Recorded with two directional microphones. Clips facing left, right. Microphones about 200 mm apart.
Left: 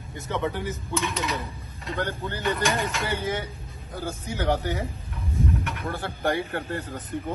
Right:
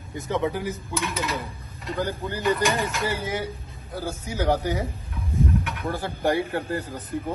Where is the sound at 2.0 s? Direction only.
10° right (ahead or behind).